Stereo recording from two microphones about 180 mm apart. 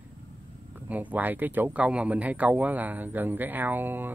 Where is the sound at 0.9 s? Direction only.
10° right (ahead or behind).